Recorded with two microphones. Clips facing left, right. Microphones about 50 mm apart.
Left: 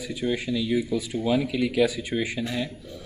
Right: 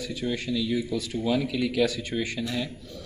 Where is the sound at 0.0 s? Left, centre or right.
Centre.